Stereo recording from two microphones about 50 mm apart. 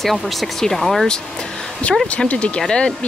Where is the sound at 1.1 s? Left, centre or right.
Centre.